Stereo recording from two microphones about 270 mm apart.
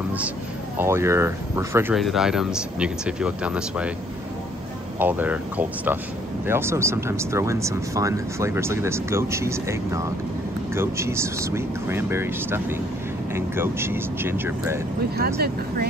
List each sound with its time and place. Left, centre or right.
0.7 s speech: centre
4.9 s speech: centre
15.1 s speech: right